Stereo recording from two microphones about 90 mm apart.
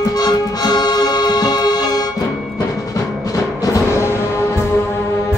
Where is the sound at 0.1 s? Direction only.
45° left (ahead or behind).